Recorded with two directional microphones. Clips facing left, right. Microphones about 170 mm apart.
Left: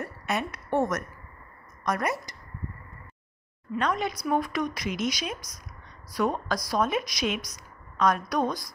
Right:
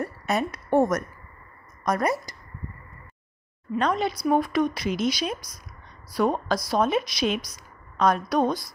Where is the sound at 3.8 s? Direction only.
30° right (ahead or behind).